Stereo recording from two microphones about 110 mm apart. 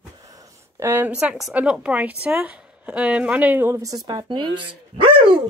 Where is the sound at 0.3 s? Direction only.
30° right (ahead or behind).